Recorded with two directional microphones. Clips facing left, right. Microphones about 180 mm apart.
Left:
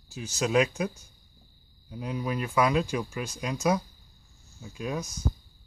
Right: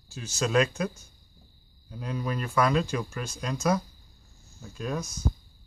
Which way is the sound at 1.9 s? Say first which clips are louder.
Left 1 dB; 10° left (ahead or behind).